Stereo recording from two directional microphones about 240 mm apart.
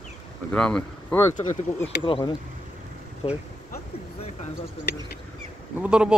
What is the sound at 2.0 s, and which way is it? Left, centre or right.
Speech, left.